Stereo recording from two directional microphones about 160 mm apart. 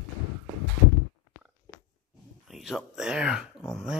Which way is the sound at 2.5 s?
Centre (ahead or behind).